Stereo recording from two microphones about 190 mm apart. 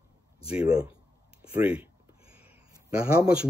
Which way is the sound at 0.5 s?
5° right (ahead or behind).